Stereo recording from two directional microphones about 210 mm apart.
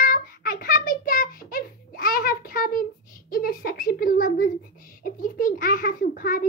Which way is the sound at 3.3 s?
45° left (ahead or behind).